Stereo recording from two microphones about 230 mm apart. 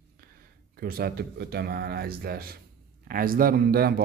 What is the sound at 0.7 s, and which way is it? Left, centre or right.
A man's voice, right.